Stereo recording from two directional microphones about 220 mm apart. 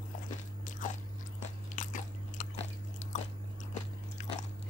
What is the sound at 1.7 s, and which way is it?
Biting, 35° left (ahead or behind).